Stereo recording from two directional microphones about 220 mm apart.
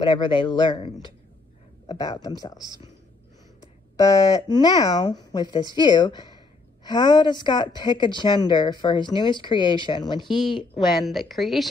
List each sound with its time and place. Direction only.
0.0 s a woman's voice: 20° left (ahead or behind)
4.0 s a woman's voice: 15° left (ahead or behind)
11.0 s a woman's voice: centre (ahead or behind)